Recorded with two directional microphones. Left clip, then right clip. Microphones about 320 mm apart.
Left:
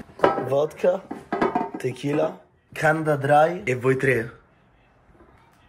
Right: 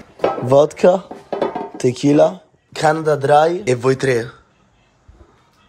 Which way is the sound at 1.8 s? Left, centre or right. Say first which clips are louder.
Right 11 dB; centre.